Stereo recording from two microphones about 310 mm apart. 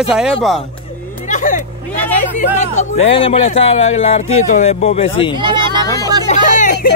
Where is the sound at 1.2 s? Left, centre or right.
Left.